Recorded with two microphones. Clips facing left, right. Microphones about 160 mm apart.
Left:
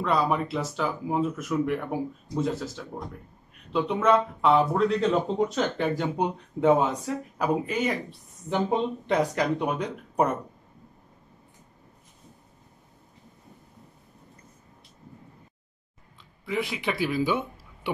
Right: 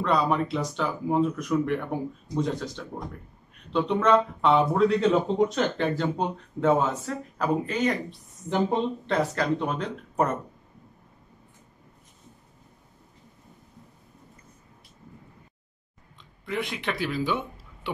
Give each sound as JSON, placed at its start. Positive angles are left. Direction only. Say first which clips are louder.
{"t": 0.0, "sound": "speech", "louder": "right 1 dB", "side_deg": 5}
{"t": 16.4, "sound": "speech", "louder": "left 1 dB", "side_deg": 5}